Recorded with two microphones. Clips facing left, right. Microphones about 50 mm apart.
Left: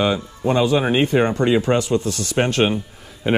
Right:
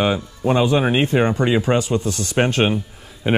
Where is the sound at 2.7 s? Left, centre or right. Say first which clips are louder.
Right 1 dB; centre.